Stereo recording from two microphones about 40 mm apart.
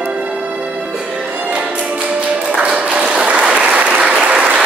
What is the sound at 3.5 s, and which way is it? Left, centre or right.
Applause, right.